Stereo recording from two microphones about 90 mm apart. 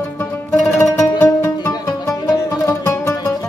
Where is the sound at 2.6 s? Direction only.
25° left (ahead or behind).